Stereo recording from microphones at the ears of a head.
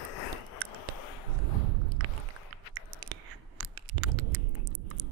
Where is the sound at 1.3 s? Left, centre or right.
Right.